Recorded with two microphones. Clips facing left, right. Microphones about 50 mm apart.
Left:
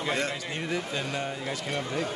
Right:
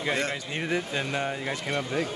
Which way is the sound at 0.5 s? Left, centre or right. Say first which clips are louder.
Right 2 dB; right.